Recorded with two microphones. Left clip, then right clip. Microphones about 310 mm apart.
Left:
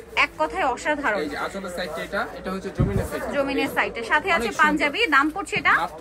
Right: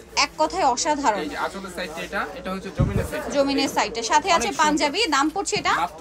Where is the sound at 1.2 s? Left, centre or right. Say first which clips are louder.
Even; centre.